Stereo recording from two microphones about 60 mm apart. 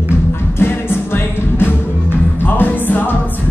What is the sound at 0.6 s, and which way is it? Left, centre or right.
Music, left.